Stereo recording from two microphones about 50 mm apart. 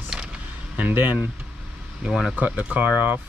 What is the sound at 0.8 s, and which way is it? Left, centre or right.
Speech, right.